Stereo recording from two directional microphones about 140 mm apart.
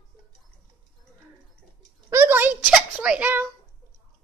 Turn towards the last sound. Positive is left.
turn(degrees=-10)  # may be behind; listen again after turning